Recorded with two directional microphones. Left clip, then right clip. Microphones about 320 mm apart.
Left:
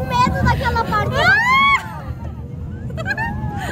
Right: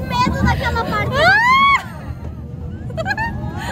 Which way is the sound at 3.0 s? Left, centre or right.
Centre.